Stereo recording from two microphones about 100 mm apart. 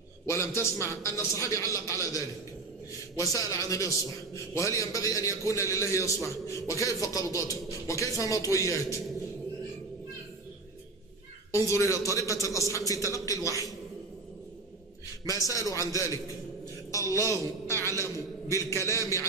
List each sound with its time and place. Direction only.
0.3 s a man's voice: 25° left (ahead or behind)
11.5 s a man's voice: 30° left (ahead or behind)
15.2 s a man's voice: 35° left (ahead or behind)